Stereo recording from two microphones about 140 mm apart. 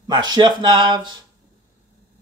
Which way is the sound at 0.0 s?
30° right (ahead or behind).